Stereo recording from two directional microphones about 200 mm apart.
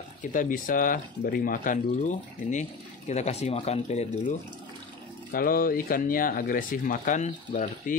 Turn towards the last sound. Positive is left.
turn(degrees=35)  # may be behind; listen again after turning